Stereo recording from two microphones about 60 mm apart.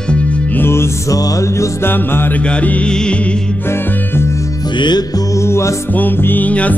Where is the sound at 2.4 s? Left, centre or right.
Left.